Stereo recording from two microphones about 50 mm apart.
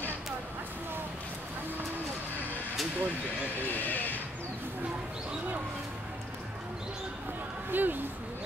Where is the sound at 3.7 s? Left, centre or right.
Left.